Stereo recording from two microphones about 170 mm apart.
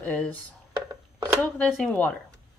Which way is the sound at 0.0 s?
10° left (ahead or behind).